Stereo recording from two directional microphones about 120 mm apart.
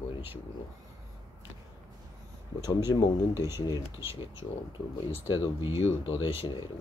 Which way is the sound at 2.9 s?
35° left (ahead or behind).